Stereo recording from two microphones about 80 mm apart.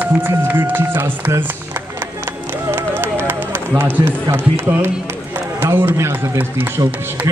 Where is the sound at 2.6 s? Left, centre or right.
Right.